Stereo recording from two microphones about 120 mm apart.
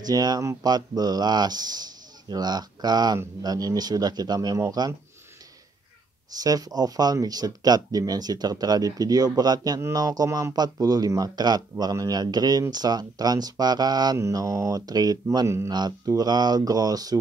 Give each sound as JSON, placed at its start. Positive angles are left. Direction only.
{"t": 0.0, "sound": "speech", "side_deg": -35}
{"t": 6.3, "sound": "speech", "side_deg": -30}
{"t": 15.7, "sound": "speech", "side_deg": -35}